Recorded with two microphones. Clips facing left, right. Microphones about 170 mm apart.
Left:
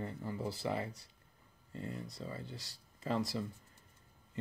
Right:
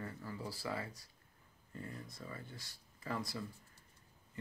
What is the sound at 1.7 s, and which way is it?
Speech, 25° left (ahead or behind).